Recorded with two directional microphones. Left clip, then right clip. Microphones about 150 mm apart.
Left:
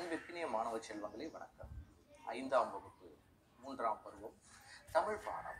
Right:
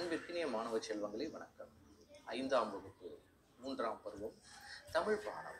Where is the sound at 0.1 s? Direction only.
5° right (ahead or behind).